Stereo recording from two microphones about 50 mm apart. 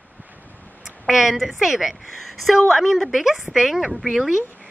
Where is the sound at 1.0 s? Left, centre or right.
Centre.